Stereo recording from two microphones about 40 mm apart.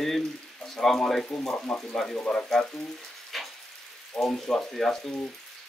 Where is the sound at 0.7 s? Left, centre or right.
Centre.